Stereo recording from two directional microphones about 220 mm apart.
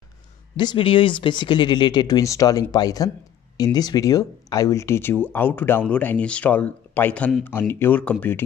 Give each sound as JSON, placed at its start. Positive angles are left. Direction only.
{"t": 0.6, "sound": "speech", "side_deg": 20}